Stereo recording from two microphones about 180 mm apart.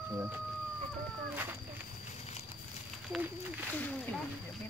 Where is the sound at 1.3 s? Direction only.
10° right (ahead or behind).